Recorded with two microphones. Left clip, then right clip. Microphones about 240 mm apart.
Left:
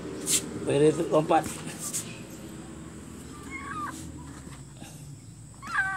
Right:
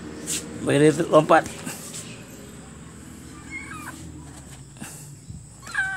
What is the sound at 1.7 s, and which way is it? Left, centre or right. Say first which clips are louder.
Dog: right 5 dB; right.